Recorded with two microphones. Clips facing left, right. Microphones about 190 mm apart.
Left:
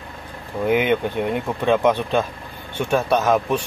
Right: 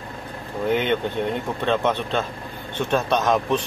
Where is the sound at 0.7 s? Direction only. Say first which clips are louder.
Left 3 dB; 10° left (ahead or behind).